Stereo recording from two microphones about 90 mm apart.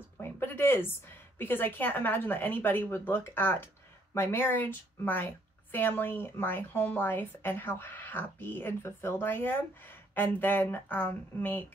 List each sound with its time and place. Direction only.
0.2 s a woman's voice: 25° left (ahead or behind)